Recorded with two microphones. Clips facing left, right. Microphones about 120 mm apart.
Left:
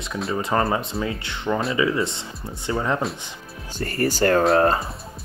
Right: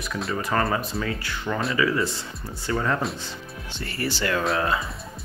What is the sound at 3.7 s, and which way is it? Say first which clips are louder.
Speech: left 6 dB; 45° left (ahead or behind).